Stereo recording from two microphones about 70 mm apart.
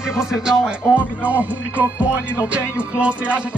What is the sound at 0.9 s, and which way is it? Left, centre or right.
Music, right.